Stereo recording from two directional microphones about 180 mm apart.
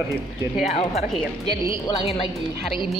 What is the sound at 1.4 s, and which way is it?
Speech, 30° left (ahead or behind).